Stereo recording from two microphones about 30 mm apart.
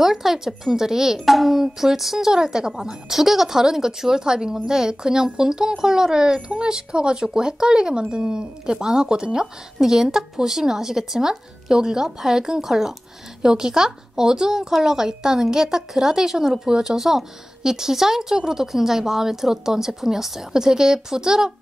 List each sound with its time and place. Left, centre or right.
0.0 s speech: centre
1.2 s a child's voice: centre; by 2.7 s right
2.7 s speech: centre; by 9.5 s right
9.8 s speech: centre
20.6 s speech: right